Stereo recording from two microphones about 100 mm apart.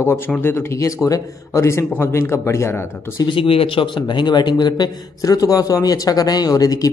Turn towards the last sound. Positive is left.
turn(degrees=40)  # may be behind; listen again after turning